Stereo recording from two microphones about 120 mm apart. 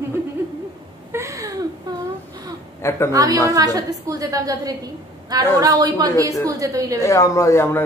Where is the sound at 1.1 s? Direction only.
25° right (ahead or behind).